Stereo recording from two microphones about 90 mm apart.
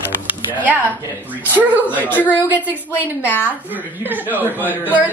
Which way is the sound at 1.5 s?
20° right (ahead or behind).